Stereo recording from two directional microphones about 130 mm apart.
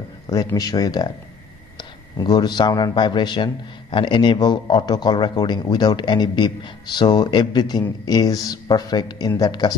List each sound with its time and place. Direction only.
0.3 s a man's voice: 25° left (ahead or behind)